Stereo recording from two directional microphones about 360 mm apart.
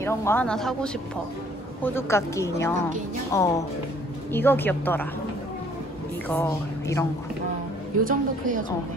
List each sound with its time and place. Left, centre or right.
0.0 s a woman's voice: centre
6.2 s speech: centre
8.0 s a woman's voice: right